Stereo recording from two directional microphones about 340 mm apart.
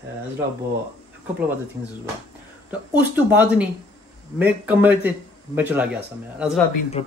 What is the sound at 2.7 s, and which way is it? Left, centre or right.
Speech, centre.